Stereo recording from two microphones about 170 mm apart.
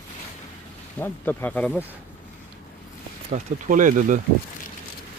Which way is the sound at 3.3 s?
50° right (ahead or behind).